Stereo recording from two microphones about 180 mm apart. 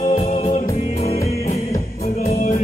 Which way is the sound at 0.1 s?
35° left (ahead or behind).